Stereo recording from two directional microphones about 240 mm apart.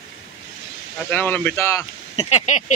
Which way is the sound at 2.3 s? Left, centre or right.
Left.